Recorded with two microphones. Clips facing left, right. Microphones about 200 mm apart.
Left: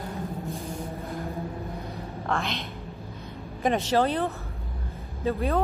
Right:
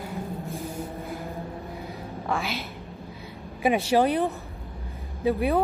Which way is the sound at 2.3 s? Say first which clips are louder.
Even; 5° right (ahead or behind).